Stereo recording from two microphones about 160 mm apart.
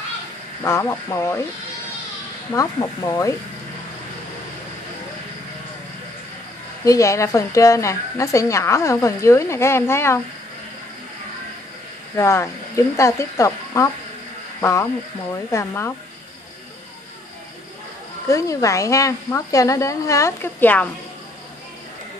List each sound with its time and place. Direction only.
0.7 s speech: 20° left (ahead or behind)
2.5 s a woman's voice: 20° left (ahead or behind)
6.8 s a woman's voice: 20° left (ahead or behind)
12.2 s a woman's voice: 15° left (ahead or behind)
18.3 s a woman's voice: 20° left (ahead or behind)